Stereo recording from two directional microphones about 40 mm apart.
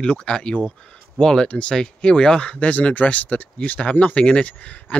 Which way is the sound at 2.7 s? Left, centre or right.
Left.